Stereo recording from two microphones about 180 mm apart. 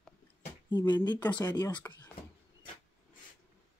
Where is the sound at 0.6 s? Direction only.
25° left (ahead or behind).